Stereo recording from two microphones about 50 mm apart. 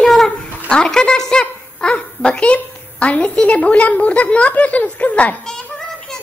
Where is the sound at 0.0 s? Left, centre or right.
Centre.